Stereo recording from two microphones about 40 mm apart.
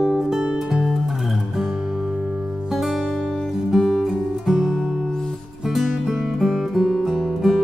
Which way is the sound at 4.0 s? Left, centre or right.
Centre.